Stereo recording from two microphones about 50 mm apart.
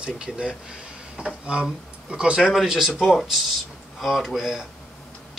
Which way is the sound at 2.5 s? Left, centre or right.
Centre.